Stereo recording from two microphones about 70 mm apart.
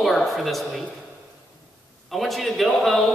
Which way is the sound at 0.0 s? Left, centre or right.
Centre.